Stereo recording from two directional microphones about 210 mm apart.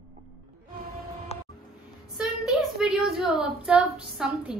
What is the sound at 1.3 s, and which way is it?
Music, 30° left (ahead or behind).